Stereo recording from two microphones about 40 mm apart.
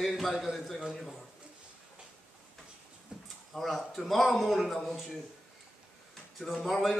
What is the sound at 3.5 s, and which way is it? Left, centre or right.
A man's voice, centre.